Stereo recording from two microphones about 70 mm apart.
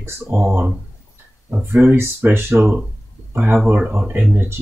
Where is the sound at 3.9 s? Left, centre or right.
Right.